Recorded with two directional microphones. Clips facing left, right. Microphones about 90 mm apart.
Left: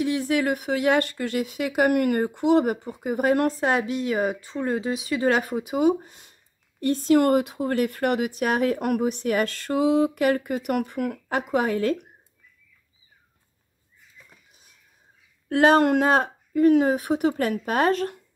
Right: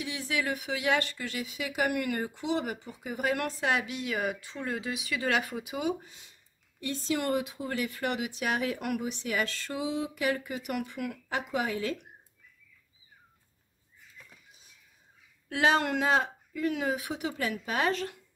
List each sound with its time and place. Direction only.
0.0 s speech: 50° left (ahead or behind)
15.4 s speech: 50° left (ahead or behind)